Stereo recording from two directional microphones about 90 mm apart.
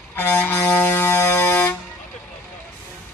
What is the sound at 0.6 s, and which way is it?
Music, 30° left (ahead or behind).